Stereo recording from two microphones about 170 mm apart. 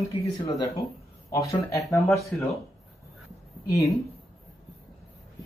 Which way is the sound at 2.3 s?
5° left (ahead or behind).